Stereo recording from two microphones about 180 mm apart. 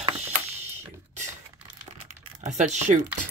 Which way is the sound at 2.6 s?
40° right (ahead or behind).